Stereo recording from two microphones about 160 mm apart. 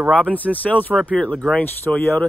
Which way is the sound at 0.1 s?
10° left (ahead or behind).